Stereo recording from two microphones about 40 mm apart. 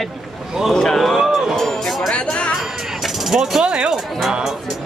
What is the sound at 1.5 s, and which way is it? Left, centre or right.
Speech, centre.